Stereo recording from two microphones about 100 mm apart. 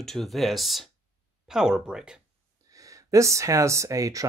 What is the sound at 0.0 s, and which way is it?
Speech, 5° left (ahead or behind).